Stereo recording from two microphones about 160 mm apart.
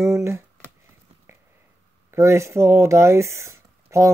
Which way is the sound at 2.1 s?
15° right (ahead or behind).